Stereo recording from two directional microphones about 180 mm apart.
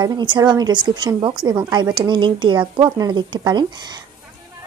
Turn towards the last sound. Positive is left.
turn(degrees=-25)  # may be behind; listen again after turning